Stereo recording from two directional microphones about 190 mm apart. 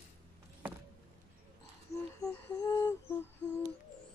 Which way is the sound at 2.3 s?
15° left (ahead or behind).